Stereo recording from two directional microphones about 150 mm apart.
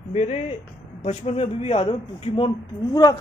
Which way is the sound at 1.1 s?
40° left (ahead or behind).